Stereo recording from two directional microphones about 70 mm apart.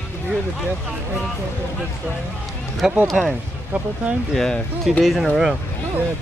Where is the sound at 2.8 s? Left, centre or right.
Centre.